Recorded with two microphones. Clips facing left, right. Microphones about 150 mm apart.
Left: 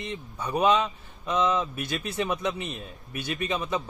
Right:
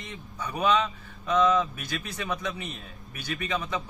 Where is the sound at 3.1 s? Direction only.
25° left (ahead or behind).